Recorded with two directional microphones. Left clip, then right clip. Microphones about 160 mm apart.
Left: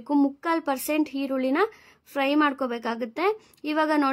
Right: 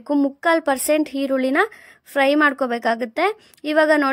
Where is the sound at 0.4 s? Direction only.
30° right (ahead or behind).